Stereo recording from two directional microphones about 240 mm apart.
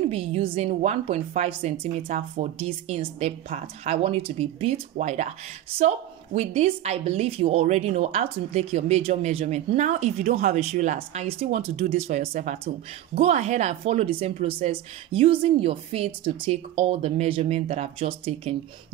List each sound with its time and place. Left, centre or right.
0.1 s a woman's voice: right